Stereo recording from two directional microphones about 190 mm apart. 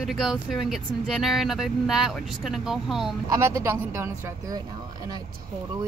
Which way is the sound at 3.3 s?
15° right (ahead or behind).